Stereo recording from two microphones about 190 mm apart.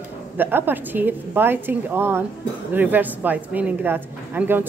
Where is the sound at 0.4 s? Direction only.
10° right (ahead or behind).